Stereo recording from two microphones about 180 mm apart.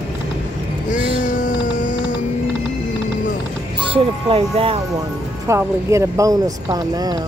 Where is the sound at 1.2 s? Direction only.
45° left (ahead or behind).